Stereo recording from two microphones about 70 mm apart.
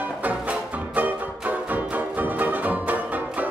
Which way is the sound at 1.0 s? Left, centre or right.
Right.